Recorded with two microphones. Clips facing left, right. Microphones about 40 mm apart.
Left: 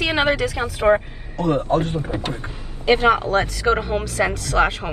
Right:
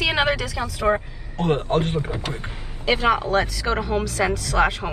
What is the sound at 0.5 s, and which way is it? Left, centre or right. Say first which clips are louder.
Speech: left 4 dB; left.